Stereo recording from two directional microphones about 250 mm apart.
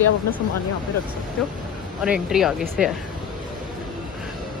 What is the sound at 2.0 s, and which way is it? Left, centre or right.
Speech, centre.